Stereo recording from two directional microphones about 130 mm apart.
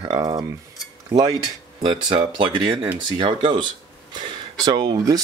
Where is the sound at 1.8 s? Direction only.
40° right (ahead or behind).